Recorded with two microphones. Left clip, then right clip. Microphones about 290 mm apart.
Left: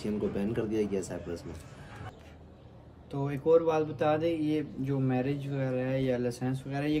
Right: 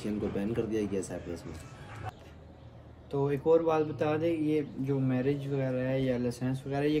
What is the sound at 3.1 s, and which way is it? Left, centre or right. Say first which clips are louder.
Speech: even; centre.